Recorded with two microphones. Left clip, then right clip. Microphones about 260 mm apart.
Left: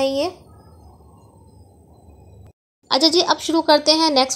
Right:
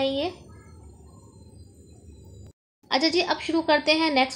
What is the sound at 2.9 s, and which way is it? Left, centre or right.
Speech, left.